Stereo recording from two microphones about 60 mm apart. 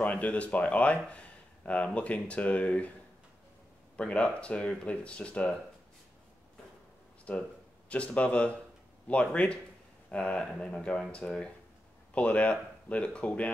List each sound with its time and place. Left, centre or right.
0.0 s speech: left
3.9 s speech: centre
7.3 s speech: left